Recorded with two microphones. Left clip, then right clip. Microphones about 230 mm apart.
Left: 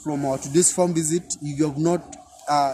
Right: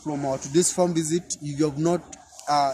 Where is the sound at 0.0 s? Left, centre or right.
Centre.